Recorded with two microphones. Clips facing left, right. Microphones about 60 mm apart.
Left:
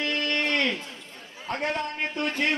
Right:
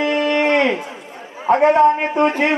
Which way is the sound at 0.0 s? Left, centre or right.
Right.